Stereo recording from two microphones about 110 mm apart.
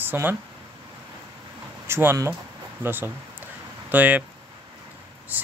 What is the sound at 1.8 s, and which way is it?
Speech, 25° right (ahead or behind).